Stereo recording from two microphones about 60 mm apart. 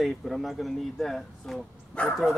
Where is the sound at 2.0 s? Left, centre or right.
Centre.